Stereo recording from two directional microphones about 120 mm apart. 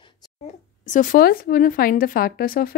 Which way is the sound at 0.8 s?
90° left.